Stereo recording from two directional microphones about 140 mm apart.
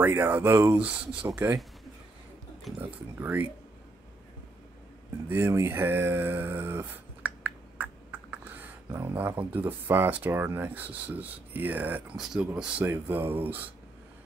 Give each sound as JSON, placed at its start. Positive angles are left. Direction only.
{"t": 0.0, "sound": "speech", "side_deg": -15}
{"t": 2.8, "sound": "speech", "side_deg": -15}
{"t": 5.3, "sound": "speech", "side_deg": -20}